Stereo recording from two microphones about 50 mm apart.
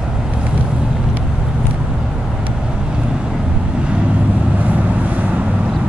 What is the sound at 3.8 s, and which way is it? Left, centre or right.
Vehicle, right.